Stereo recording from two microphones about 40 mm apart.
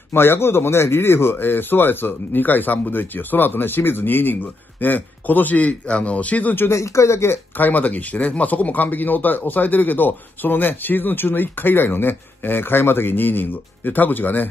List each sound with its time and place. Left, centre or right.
0.1 s speech: left
7.5 s speech: left